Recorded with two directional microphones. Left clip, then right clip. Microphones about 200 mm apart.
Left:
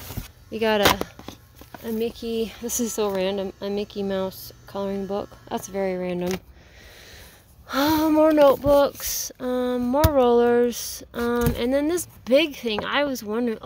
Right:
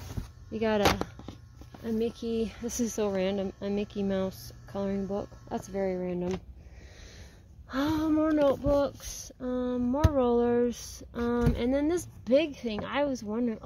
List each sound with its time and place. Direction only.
0.5 s speech: 15° left (ahead or behind)
7.6 s speech: 20° left (ahead or behind)